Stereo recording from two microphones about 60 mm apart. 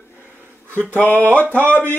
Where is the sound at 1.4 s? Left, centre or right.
Right.